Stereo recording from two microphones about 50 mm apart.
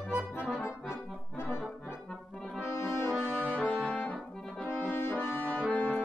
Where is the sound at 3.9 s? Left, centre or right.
Left.